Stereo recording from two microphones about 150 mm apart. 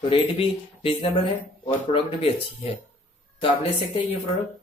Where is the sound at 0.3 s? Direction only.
35° left (ahead or behind).